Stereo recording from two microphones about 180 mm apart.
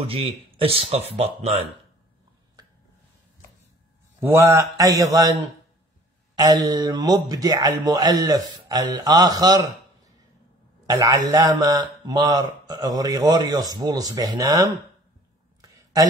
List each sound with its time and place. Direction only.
0.0 s speech: 30° right (ahead or behind)
4.2 s speech: 15° right (ahead or behind)
6.3 s speech: 20° right (ahead or behind)
10.9 s speech: 20° right (ahead or behind)
15.6 s a sound: 20° right (ahead or behind)